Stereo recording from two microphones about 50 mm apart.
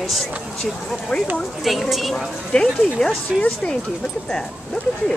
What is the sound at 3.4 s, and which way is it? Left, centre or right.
Speech, left.